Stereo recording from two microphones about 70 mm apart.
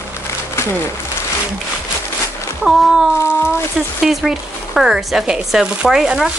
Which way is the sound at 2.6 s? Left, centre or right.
Centre.